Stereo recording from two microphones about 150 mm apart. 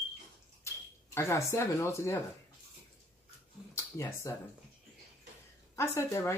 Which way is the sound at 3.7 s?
20° left (ahead or behind).